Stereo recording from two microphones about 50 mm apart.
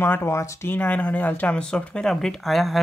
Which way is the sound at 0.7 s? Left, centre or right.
Left.